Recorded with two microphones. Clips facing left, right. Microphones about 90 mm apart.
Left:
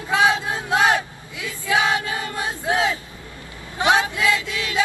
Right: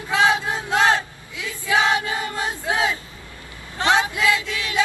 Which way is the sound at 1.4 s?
20° right (ahead or behind).